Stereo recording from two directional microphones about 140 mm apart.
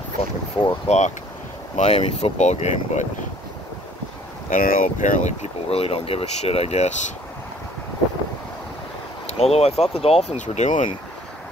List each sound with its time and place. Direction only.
0.8 s speech: 55° left (ahead or behind)
4.5 s speech: 80° left; by 7.1 s 50° left (ahead or behind)
9.4 s speech: 45° left (ahead or behind)